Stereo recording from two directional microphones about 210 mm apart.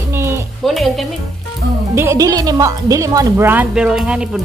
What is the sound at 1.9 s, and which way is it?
A woman's voice, 15° right (ahead or behind).